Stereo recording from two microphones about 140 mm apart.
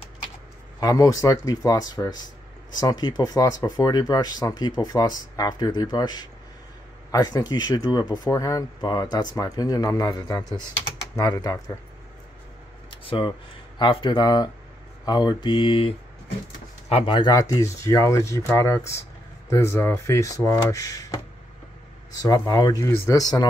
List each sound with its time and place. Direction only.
0.7 s speech: 25° left (ahead or behind)
12.9 s speech: 35° left (ahead or behind)
13.7 s mantra: 35° left (ahead or behind)
16.9 s speech: 40° left (ahead or behind)
22.1 s speech: 25° left (ahead or behind)